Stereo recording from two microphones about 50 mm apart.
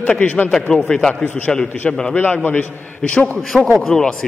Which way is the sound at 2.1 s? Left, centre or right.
Left.